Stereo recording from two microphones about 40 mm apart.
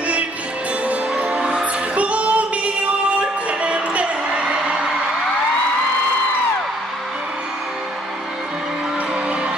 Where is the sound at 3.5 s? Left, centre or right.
Right.